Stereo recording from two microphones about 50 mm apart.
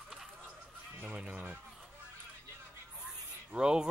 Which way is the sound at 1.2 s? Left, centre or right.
Centre.